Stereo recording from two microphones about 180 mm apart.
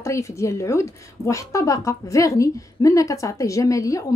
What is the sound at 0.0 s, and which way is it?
A woman's voice, 15° left (ahead or behind).